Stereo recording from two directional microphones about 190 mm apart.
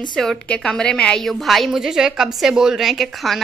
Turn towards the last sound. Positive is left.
turn(degrees=0)  # may be behind; listen again after turning